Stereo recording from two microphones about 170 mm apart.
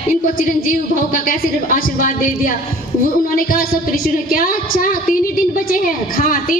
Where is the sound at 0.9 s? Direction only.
55° left (ahead or behind).